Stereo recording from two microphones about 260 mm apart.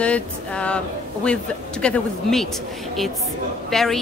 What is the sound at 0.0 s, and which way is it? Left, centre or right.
A woman's voice, centre.